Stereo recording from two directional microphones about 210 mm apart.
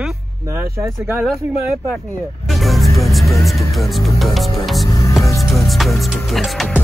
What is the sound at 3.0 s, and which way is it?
Speech, centre (ahead or behind).